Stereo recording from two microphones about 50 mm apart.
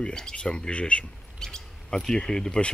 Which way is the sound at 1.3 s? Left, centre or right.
Centre.